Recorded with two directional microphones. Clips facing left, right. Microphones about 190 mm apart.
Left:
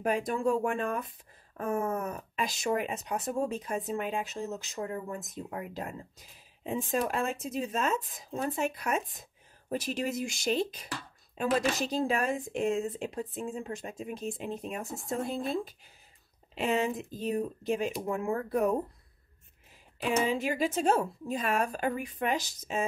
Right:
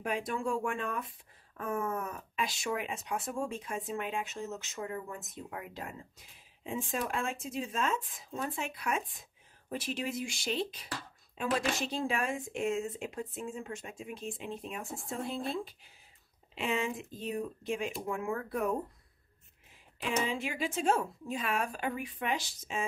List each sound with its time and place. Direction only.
0.0 s speech: 40° left (ahead or behind)
20.2 s speech: 40° left (ahead or behind)